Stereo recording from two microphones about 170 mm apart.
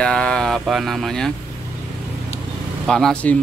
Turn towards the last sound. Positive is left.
turn(degrees=5)  # may be behind; listen again after turning